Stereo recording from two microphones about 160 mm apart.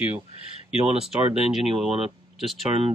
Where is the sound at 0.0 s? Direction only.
35° left (ahead or behind).